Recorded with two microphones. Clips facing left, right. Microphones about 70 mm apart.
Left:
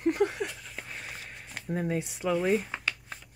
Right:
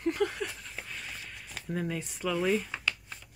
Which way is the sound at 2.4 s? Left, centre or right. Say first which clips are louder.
Left 2 dB; left.